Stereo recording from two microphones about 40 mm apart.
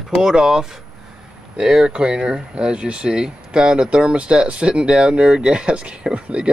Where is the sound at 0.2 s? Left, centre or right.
Centre.